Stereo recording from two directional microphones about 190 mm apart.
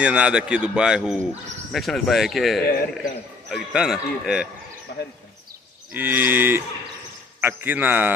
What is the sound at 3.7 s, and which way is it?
Speech, 5° right (ahead or behind).